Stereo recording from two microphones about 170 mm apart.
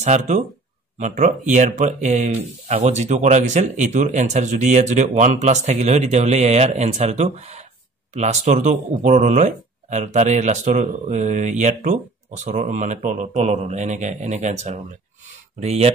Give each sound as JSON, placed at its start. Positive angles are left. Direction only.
{"t": 0.0, "sound": "speech", "side_deg": -45}